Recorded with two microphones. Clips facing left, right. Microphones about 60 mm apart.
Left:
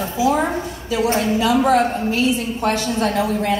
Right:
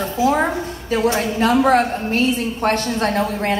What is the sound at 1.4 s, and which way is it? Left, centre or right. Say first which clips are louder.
A woman's voice: right 2 dB; right.